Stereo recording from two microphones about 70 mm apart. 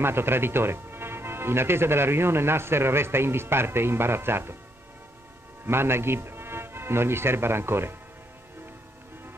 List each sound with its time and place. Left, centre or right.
0.0 s speech: right
5.7 s a man's voice: right